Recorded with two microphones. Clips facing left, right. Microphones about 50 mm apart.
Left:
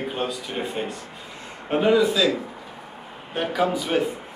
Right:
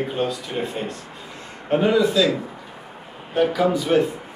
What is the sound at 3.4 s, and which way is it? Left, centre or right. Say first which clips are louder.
Speech: right 4 dB; centre.